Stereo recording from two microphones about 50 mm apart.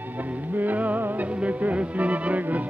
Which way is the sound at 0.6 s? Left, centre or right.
Right.